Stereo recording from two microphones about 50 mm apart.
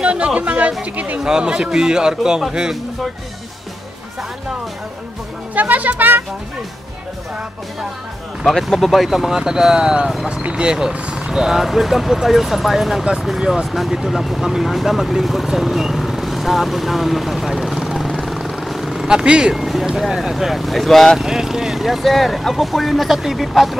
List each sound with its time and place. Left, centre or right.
0.0 s speech: right
1.2 s speech: centre
5.5 s speech: right
8.5 s speech: centre
13.4 s speech: centre
18.2 s vehicle: centre
19.0 s speech: centre
19.5 s speech: centre
21.2 s speech: centre